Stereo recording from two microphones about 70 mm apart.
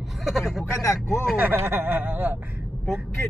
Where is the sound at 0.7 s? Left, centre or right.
Left.